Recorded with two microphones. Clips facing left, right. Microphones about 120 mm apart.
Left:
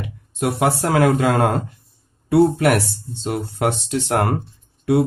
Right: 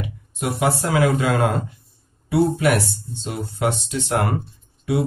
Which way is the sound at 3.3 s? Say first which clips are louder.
Left 2 dB; 70° left (ahead or behind).